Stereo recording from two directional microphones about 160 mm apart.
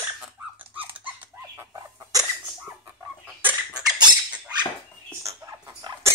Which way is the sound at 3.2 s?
10° right (ahead or behind).